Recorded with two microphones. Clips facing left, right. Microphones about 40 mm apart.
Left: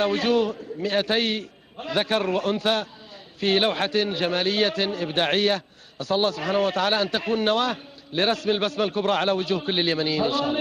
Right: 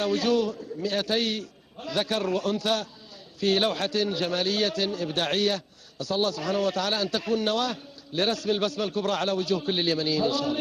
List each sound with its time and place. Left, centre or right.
0.0 s a man's voice: left